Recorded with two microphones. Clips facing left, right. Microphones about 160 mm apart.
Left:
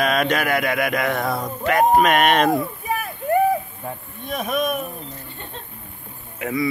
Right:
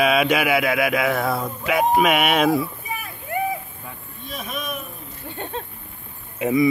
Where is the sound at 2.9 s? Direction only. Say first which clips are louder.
Left 14 dB; 50° left (ahead or behind).